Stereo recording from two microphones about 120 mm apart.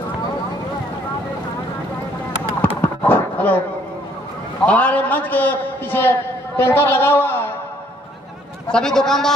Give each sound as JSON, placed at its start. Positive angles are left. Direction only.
{"t": 2.8, "sound": "a sound", "side_deg": 15}
{"t": 4.6, "sound": "a man's voice", "side_deg": 10}
{"t": 8.6, "sound": "a man's voice", "side_deg": 5}